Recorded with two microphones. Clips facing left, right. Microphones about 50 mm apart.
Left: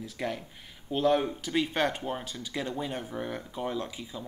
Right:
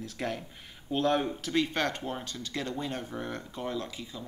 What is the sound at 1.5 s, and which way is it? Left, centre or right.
Speech, centre.